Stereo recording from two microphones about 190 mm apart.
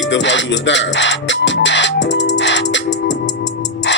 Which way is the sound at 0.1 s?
70° left (ahead or behind).